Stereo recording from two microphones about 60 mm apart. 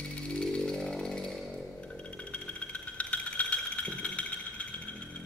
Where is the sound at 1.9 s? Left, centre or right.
Left.